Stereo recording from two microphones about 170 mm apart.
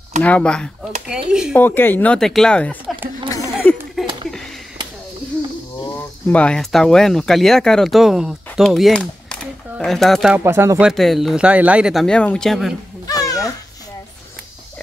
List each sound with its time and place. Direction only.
0.2 s speech: 5° left (ahead or behind)
1.5 s speech: 10° left (ahead or behind)
3.0 s a sound: 10° right (ahead or behind)
5.8 s speech: 10° left (ahead or behind)
10.3 s speech: 15° right (ahead or behind)
10.9 s speech: centre (ahead or behind)
13.0 s a sound: 20° left (ahead or behind)